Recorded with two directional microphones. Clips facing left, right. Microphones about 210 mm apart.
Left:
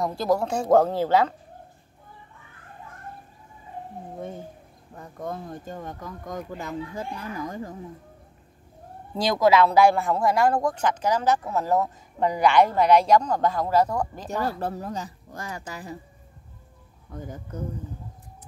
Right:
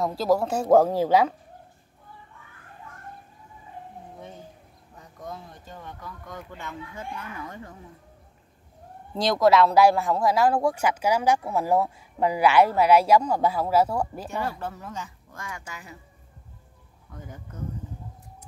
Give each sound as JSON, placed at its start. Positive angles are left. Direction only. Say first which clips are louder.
{"t": 0.0, "sound": "speech", "louder": "right 1 dB", "side_deg": 0}
{"t": 4.9, "sound": "speech", "louder": "left 6 dB", "side_deg": 55}
{"t": 9.1, "sound": "speech", "louder": "even", "side_deg": 0}
{"t": 14.6, "sound": "speech", "louder": "left 5 dB", "side_deg": 35}
{"t": 17.1, "sound": "speech", "louder": "left 6 dB", "side_deg": 35}